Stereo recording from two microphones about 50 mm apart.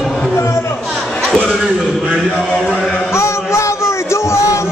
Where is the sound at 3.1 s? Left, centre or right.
Left.